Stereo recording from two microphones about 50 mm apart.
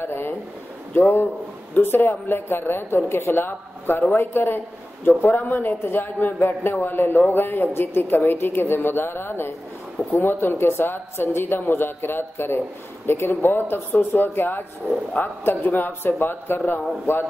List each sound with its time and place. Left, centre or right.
0.0 s speech: left
5.3 s speech: left